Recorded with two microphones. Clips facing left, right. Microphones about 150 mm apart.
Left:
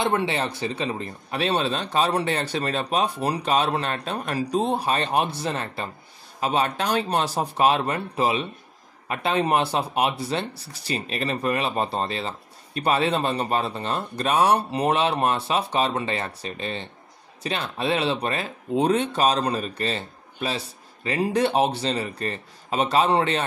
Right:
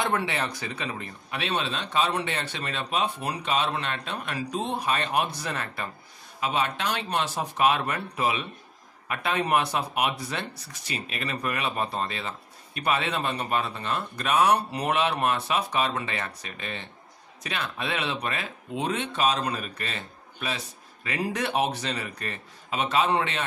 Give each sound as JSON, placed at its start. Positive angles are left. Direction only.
{"t": 0.0, "sound": "speech", "side_deg": 25}